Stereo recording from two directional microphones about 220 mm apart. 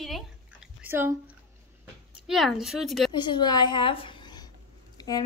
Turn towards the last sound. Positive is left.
turn(degrees=20)  # may be behind; listen again after turning